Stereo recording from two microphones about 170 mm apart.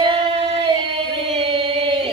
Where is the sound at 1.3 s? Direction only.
35° right (ahead or behind).